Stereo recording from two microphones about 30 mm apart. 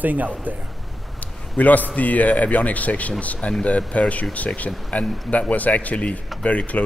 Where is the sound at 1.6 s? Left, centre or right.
Left.